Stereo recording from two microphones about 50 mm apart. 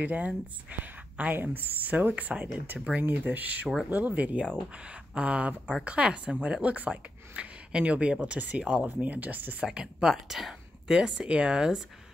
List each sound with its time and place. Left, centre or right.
0.0 s a woman's voice: right
3.0 s a woman's voice: right
9.8 s speech: centre